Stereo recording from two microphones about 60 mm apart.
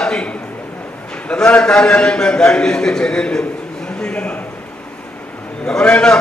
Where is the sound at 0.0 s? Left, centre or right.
Centre.